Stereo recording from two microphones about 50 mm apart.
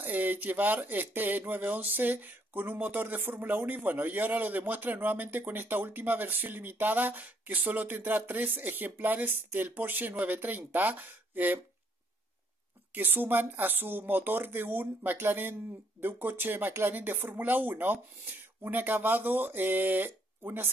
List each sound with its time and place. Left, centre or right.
0.0 s speech: right
12.9 s speech: right